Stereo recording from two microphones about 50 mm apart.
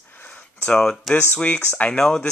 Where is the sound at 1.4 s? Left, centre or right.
Left.